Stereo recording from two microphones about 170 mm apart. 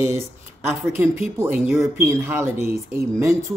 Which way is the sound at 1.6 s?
Centre (ahead or behind).